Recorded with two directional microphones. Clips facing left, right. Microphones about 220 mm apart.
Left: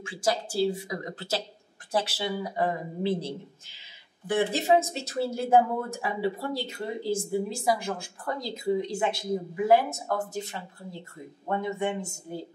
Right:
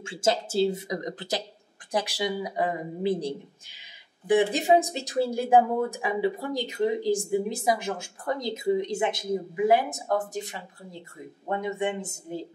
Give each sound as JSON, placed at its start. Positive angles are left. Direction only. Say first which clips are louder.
{"t": 0.0, "sound": "speech", "louder": "right 2 dB", "side_deg": -25}